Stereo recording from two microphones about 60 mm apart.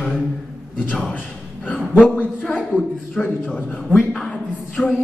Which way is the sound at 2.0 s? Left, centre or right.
Left.